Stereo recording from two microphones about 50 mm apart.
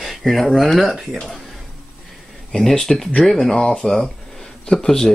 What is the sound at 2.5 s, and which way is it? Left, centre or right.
Speech, centre.